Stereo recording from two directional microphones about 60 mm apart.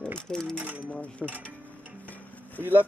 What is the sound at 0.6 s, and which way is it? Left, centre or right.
Speech, right.